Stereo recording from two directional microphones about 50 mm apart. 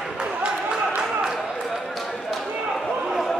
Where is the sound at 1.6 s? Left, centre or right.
Centre.